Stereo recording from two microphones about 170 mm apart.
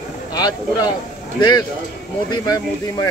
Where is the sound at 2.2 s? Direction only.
25° left (ahead or behind).